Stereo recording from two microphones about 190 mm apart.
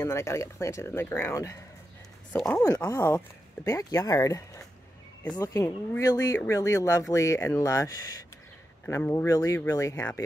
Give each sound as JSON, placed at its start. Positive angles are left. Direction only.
{"t": 0.0, "sound": "speech", "side_deg": 15}